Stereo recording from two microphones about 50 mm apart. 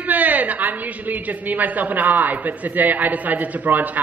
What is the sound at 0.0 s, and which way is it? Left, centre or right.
A woman's voice, right.